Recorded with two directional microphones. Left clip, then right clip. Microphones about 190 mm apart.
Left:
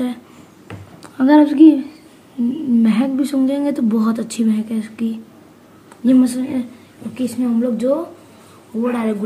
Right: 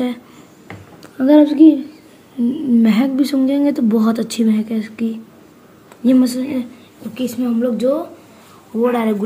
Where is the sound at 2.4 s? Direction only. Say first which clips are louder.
Right 2 dB; 15° right (ahead or behind).